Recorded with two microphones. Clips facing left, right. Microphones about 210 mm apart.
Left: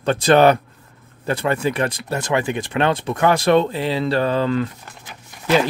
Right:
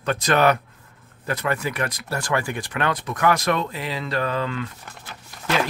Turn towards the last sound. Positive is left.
turn(degrees=15)  # may be behind; listen again after turning